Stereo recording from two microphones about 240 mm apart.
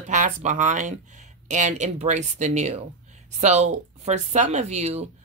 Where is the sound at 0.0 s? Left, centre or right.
Right.